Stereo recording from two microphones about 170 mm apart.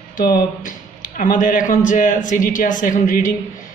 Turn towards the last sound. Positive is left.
turn(degrees=50)  # may be behind; listen again after turning